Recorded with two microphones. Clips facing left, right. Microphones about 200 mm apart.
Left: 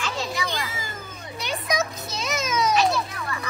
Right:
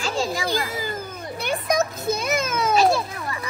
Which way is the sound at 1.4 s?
55° right (ahead or behind).